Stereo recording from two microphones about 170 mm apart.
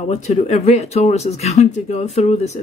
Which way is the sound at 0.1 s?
40° left (ahead or behind).